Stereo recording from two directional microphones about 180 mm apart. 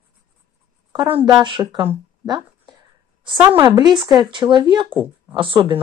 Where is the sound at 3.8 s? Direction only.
25° right (ahead or behind).